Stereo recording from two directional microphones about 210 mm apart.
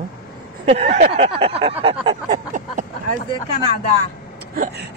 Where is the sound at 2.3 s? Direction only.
35° right (ahead or behind).